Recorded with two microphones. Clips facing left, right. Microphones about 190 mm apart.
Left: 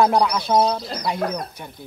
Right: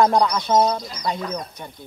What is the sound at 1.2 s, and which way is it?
Speech, 60° left (ahead or behind).